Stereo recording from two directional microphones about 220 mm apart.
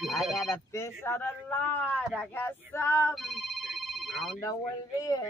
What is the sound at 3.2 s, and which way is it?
Telephone bell ringing, centre (ahead or behind).